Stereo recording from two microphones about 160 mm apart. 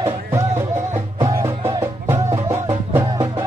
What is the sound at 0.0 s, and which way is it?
Music, 15° right (ahead or behind).